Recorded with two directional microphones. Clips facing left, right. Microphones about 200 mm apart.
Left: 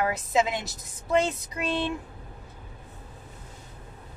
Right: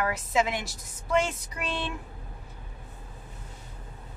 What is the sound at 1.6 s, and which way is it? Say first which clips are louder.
Speech: left 5 dB; 20° left (ahead or behind).